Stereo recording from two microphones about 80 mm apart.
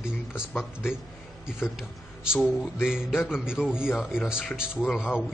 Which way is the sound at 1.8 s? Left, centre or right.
Centre.